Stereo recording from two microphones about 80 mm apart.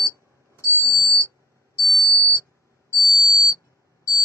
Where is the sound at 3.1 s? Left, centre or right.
Left.